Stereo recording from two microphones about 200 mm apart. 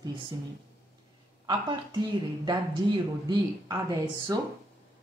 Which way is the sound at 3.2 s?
20° right (ahead or behind).